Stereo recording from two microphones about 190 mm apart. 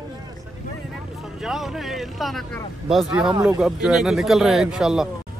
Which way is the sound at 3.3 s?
20° right (ahead or behind).